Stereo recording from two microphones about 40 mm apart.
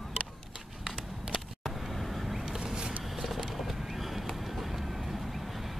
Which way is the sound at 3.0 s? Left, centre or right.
Centre.